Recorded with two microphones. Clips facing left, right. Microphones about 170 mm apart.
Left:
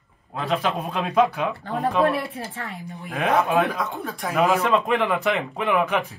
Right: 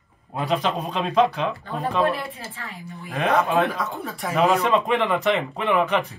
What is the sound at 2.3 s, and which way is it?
Speech, 65° left (ahead or behind).